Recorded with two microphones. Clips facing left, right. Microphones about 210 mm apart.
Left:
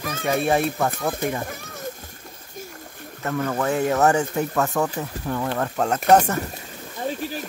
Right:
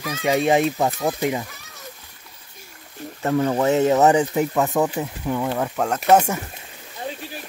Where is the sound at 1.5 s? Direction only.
50° left (ahead or behind).